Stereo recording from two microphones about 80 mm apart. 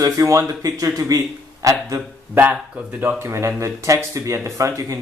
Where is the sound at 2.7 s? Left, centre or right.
Centre.